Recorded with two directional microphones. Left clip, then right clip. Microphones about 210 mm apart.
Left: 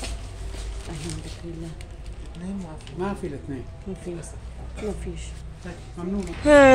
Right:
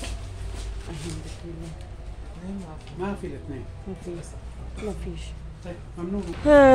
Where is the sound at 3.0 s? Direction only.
45° left (ahead or behind).